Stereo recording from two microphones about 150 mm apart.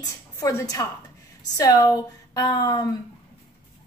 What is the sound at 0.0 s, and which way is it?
A woman's voice, 25° left (ahead or behind).